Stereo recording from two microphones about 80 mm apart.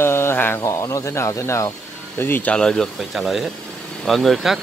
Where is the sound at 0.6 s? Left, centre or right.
Left.